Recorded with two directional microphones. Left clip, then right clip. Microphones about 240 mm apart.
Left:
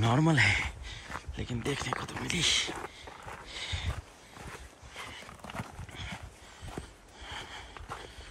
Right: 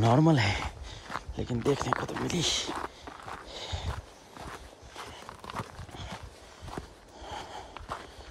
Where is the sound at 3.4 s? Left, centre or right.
Right.